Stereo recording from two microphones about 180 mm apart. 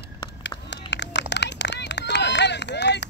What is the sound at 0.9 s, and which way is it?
Run, 75° left (ahead or behind).